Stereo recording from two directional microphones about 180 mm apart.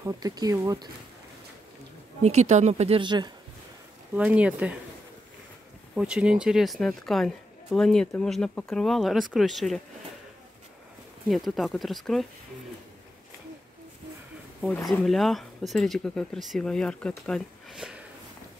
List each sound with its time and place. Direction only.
0.0 s speech: 20° right (ahead or behind)
2.2 s speech: 40° right (ahead or behind)
4.1 s speech: 5° right (ahead or behind)
5.9 s a woman's voice: 5° right (ahead or behind)
11.2 s a woman's voice: centre (ahead or behind)
14.9 s a woman's voice: centre (ahead or behind)